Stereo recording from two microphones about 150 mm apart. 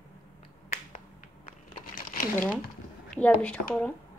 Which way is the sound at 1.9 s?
75° left (ahead or behind).